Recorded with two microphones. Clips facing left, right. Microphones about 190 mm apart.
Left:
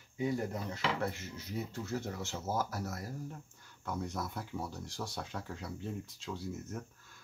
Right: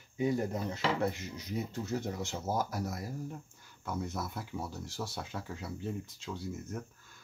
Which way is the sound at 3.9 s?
5° right (ahead or behind).